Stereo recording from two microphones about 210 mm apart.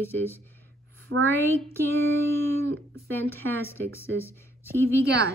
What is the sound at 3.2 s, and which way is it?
A woman's voice, 10° left (ahead or behind).